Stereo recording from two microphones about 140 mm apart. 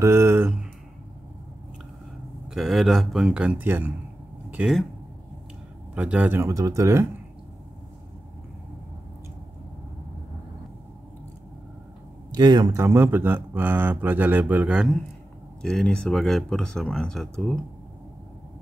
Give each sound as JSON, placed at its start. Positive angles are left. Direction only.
{"t": 0.0, "sound": "speech", "side_deg": -20}
{"t": 2.4, "sound": "speech", "side_deg": -5}
{"t": 4.5, "sound": "a sound", "side_deg": -10}
{"t": 5.9, "sound": "speech", "side_deg": -10}
{"t": 12.3, "sound": "speech", "side_deg": -30}
{"t": 12.7, "sound": "speech", "side_deg": -20}
{"t": 15.6, "sound": "speech", "side_deg": 5}